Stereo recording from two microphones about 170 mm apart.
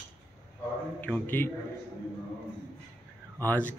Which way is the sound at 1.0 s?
10° left (ahead or behind).